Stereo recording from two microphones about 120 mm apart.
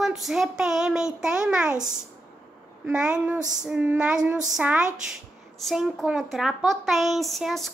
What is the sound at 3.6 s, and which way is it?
Speech, 5° right (ahead or behind).